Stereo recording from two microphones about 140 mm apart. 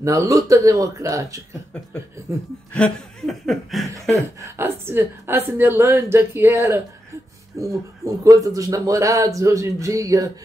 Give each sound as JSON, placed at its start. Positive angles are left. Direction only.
{"t": 0.0, "sound": "speech", "side_deg": -25}
{"t": 2.7, "sound": "chuckle", "side_deg": 5}
{"t": 4.1, "sound": "a woman's voice", "side_deg": -20}